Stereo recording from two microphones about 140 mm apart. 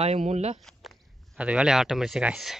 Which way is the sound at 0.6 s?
Centre (ahead or behind).